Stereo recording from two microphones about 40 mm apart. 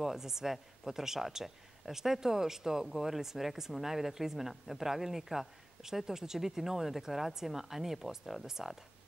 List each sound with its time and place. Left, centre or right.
0.0 s speech: centre